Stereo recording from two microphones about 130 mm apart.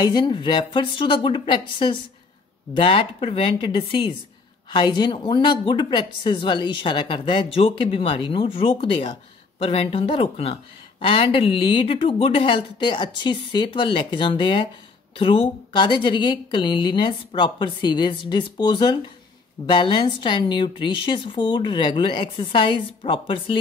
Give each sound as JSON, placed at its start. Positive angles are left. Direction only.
{"t": 0.0, "sound": "a woman's voice", "side_deg": 35}